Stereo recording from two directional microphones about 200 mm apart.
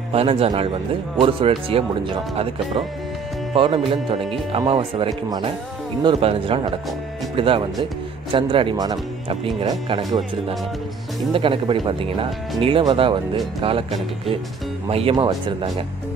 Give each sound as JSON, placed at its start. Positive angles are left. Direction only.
{"t": 0.1, "sound": "speech", "side_deg": -30}
{"t": 11.3, "sound": "speech", "side_deg": -25}